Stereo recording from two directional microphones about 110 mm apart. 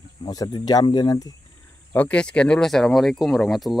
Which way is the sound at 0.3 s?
35° left (ahead or behind).